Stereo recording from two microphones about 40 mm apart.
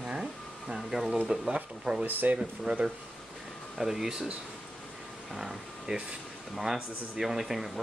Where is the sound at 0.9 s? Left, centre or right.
Centre.